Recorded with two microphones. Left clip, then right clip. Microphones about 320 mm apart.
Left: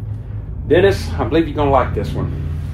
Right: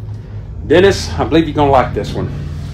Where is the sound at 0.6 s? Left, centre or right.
Right.